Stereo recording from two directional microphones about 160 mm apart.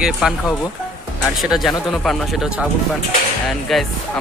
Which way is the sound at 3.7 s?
Centre (ahead or behind).